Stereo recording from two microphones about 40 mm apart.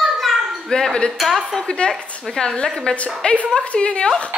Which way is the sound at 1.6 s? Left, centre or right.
Left.